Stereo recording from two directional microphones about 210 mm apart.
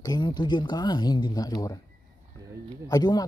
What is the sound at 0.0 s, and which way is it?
Speech, 20° left (ahead or behind).